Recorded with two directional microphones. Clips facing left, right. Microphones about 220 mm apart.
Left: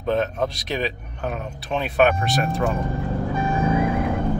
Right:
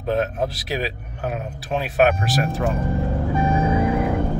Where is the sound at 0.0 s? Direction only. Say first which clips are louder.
Even; 5° right (ahead or behind).